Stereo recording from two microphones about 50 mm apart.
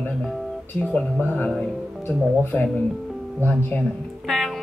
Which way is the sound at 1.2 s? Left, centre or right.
Left.